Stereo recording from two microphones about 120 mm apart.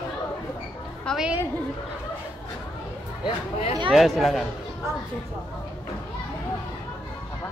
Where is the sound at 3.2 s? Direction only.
60° left (ahead or behind).